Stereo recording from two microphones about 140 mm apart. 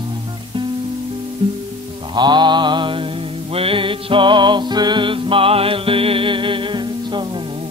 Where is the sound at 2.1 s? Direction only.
30° right (ahead or behind).